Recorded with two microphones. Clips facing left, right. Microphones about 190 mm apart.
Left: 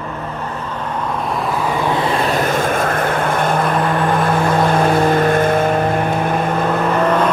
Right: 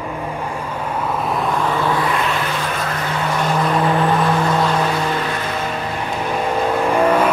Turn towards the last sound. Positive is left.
turn(degrees=-10)  # may be behind; listen again after turning